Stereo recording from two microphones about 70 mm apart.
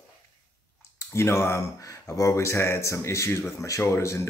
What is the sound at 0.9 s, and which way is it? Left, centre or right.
Speech, left.